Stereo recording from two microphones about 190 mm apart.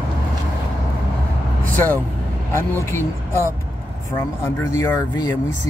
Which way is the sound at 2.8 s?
15° left (ahead or behind).